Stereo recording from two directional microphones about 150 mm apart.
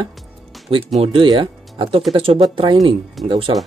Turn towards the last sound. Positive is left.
turn(degrees=-35)  # may be behind; listen again after turning